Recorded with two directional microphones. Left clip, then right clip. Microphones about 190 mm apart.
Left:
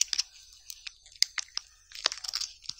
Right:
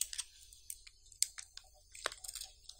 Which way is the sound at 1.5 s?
25° left (ahead or behind).